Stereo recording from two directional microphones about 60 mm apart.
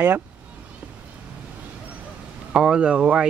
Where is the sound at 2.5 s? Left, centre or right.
Centre.